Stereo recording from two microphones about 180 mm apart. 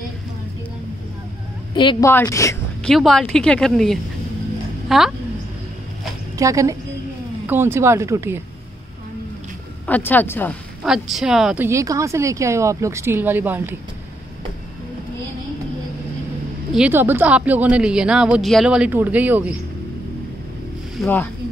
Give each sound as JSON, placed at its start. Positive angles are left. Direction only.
{"t": 1.7, "sound": "a woman's voice", "side_deg": 25}
{"t": 2.8, "sound": "a woman's voice", "side_deg": 0}
{"t": 6.3, "sound": "a woman's voice", "side_deg": -20}
{"t": 9.8, "sound": "a woman's voice", "side_deg": 10}
{"t": 10.8, "sound": "speech", "side_deg": -5}
{"t": 16.7, "sound": "speech", "side_deg": -10}
{"t": 21.0, "sound": "a woman's voice", "side_deg": 10}